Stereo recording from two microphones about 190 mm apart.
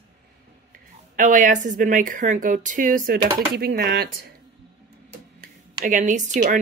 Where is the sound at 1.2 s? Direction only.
40° right (ahead or behind).